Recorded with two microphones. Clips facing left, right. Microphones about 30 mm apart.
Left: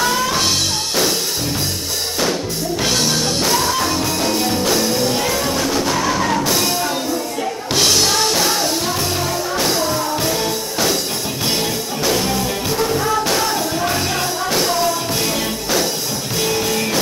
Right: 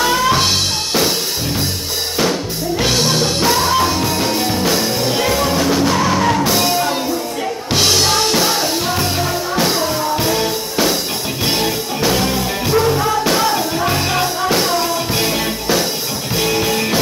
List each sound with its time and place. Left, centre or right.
0.0 s music: centre
2.8 s music: centre